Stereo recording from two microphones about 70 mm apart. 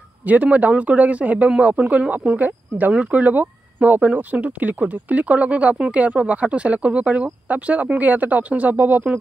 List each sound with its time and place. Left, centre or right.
0.3 s speech: right